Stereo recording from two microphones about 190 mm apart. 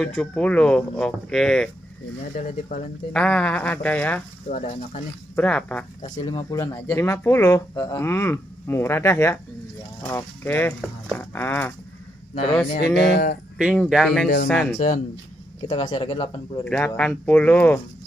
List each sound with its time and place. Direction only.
0.0 s speech: 5° left (ahead or behind)
2.3 s speech: 40° left (ahead or behind)
3.1 s speech: 5° left (ahead or behind)
4.5 s speech: 40° left (ahead or behind)
5.3 s speech: 5° left (ahead or behind)
6.1 s speech: 20° left (ahead or behind)
13.0 s speech: 55° left (ahead or behind)
13.6 s speech: 5° right (ahead or behind)
14.2 s speech: 55° left (ahead or behind)
14.8 s speech: 45° left (ahead or behind)
15.6 s speech: 25° left (ahead or behind)
16.6 s speech: 5° left (ahead or behind)